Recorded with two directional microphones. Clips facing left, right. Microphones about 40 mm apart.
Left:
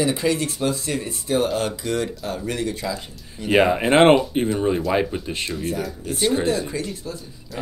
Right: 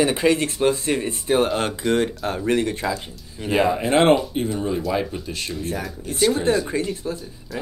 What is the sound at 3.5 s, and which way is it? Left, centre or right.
Speech, left.